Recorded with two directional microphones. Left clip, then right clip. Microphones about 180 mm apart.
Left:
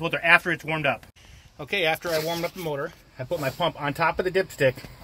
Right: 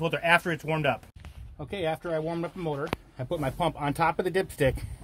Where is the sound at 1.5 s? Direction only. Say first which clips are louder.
Left 6 dB; centre (ahead or behind); by 4.8 s 25° right (ahead or behind).